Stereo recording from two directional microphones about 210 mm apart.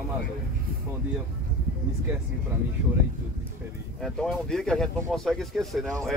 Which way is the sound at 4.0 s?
Centre (ahead or behind).